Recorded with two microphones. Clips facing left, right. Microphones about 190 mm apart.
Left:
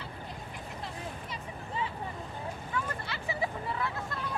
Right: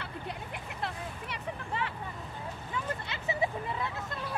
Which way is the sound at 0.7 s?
70° right (ahead or behind).